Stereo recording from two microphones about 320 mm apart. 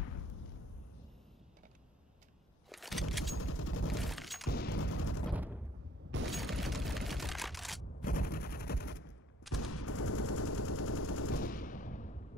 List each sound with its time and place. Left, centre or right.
2.7 s vehicle: centre
3.3 s a sound: left
3.9 s shatter: centre
4.5 s a sound: left
5.3 s gunshot: centre
6.3 s fusillade: centre
8.0 s gunshot: left
9.5 s gunshot: left
11.3 s a sound: left